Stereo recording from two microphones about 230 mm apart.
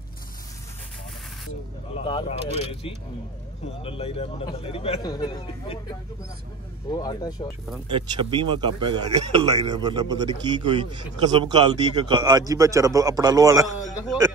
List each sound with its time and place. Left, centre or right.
2.0 s a man's voice: left
7.9 s a man's voice: right